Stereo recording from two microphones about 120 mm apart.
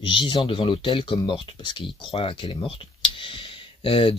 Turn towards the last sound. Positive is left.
turn(degrees=50)  # may be behind; listen again after turning